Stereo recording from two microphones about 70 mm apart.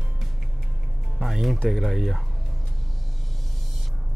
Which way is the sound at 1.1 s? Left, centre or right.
Centre.